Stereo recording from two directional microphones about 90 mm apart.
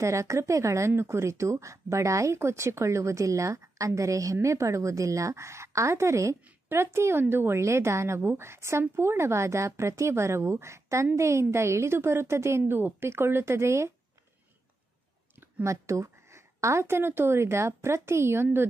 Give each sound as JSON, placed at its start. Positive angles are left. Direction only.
{"t": 0.0, "sound": "a woman's voice", "side_deg": -35}
{"t": 15.3, "sound": "a sound", "side_deg": -25}
{"t": 15.7, "sound": "speech", "side_deg": -35}